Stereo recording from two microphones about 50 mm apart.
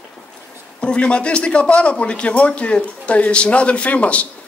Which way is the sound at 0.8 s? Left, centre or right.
Left.